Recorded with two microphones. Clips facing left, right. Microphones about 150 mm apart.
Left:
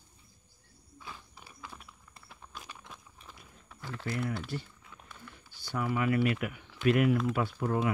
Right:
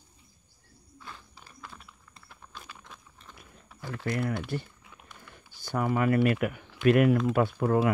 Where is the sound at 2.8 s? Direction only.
5° left (ahead or behind).